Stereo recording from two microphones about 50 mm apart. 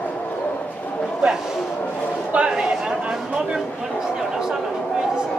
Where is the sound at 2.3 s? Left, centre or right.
Centre.